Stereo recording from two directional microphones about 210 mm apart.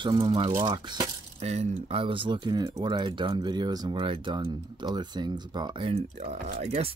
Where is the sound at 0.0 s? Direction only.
20° right (ahead or behind).